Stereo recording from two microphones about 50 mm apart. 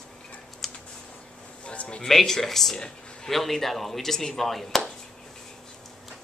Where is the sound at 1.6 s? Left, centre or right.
Left.